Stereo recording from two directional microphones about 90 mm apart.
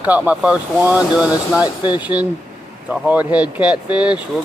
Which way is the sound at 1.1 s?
5° right (ahead or behind).